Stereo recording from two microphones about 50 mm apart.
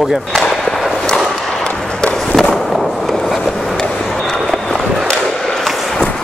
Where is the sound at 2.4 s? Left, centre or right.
Centre.